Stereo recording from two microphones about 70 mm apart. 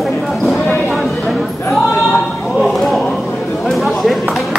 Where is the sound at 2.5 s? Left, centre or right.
Centre.